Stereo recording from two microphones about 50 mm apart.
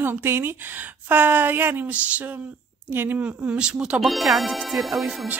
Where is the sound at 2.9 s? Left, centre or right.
Right.